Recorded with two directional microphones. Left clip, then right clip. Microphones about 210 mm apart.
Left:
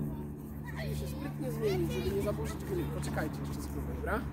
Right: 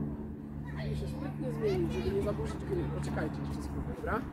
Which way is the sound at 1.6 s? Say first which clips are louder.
Right 1 dB; 40° left (ahead or behind).